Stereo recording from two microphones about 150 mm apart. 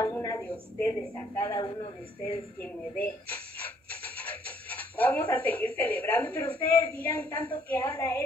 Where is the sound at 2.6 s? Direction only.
10° left (ahead or behind).